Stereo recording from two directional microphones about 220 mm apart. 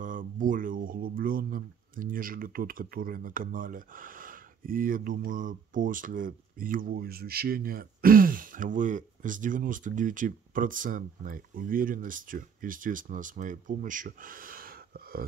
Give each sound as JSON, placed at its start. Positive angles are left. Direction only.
{"t": 0.0, "sound": "speech", "side_deg": -35}